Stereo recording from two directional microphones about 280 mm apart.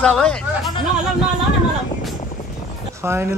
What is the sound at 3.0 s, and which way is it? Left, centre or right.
Speech, centre.